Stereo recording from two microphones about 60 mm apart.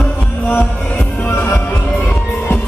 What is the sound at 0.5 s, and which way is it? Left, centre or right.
Music, left.